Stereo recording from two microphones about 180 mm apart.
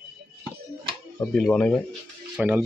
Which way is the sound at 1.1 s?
5° left (ahead or behind).